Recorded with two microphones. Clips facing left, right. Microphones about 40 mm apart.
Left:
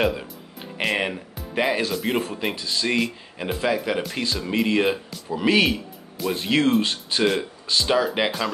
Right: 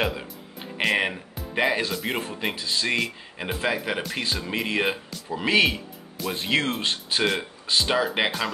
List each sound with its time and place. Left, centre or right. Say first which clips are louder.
0.0 s speech: left 4 dB; centre
2.5 s speech: left 1 dB; centre